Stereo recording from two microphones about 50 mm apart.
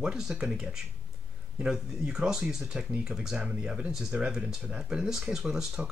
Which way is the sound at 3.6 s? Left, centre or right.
Right.